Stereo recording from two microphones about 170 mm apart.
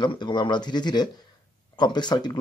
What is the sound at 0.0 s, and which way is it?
Speech, 25° left (ahead or behind).